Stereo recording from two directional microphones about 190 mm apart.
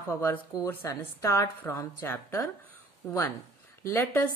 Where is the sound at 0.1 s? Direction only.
15° left (ahead or behind).